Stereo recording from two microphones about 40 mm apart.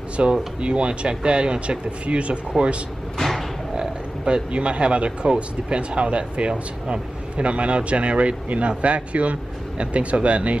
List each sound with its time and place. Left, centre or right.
0.2 s speech: right
3.2 s thump: centre
3.7 s a sound: centre
4.5 s speech: right